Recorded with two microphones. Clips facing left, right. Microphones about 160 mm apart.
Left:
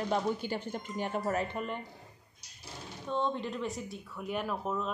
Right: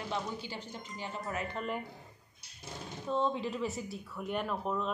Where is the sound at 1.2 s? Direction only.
40° left (ahead or behind).